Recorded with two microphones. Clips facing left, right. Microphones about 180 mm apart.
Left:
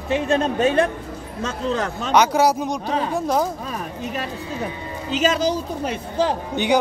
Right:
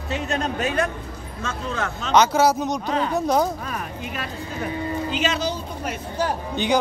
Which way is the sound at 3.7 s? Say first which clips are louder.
Left 3 dB; 35° left (ahead or behind).